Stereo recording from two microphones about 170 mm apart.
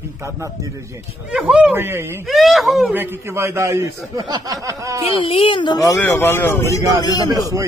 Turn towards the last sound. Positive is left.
turn(degrees=-20)  # may be behind; listen again after turning